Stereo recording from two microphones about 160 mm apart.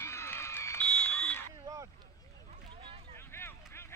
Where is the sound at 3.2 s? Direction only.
15° left (ahead or behind).